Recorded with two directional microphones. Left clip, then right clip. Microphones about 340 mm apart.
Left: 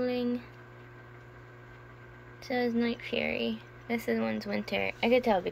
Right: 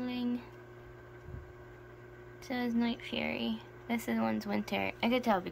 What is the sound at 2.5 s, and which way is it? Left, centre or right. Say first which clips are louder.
Speech: left 5 dB; centre.